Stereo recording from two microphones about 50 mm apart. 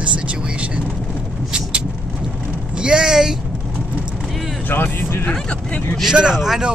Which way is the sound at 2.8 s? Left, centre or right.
Centre.